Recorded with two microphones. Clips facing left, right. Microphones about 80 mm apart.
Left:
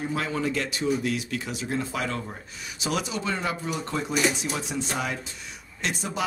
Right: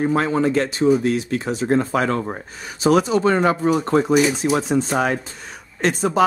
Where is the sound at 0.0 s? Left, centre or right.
Right.